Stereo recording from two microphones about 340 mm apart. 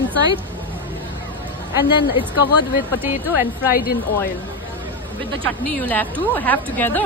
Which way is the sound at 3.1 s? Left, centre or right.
Left.